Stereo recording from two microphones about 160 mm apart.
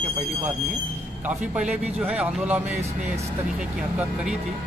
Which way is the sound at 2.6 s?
45° right (ahead or behind).